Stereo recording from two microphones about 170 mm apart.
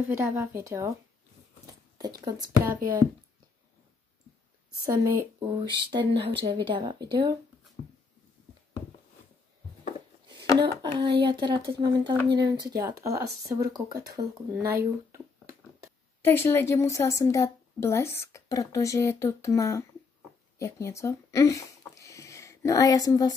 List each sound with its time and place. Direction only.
0.1 s speech: 15° right (ahead or behind)
2.2 s speech: 20° right (ahead or behind)
5.0 s speech: 25° right (ahead or behind)
10.6 s speech: 30° right (ahead or behind)
12.0 s speech: 85° right
13.0 s speech: 20° right (ahead or behind)
15.1 s a sound: 15° right (ahead or behind)
16.2 s a woman's voice: 15° left (ahead or behind)